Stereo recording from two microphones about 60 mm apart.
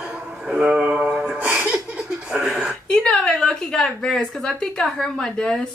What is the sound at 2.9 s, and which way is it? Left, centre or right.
A woman's voice, centre.